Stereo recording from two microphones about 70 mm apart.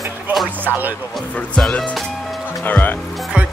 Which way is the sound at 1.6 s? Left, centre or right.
Centre.